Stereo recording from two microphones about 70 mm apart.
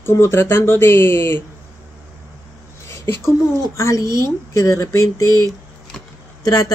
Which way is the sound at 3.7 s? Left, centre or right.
Left.